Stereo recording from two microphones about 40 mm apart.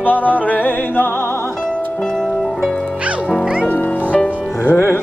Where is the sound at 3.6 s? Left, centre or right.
Left.